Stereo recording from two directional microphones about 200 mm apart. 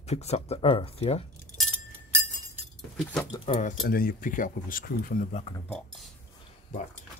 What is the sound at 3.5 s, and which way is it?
Speech, 40° left (ahead or behind).